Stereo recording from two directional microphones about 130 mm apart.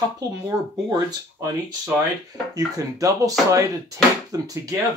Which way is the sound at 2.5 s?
25° right (ahead or behind).